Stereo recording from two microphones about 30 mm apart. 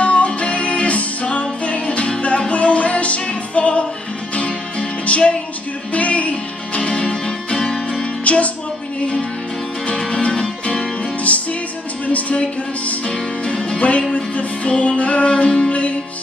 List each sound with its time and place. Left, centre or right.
0.0 s music: left
5.9 s music: left
7.5 s music: centre
8.2 s music: left
10.1 s music: left
10.4 s music: centre
11.3 s music: left
13.5 s music: left
15.2 s music: left